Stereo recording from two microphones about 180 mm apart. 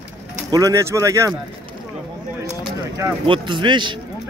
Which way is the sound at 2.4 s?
15° right (ahead or behind).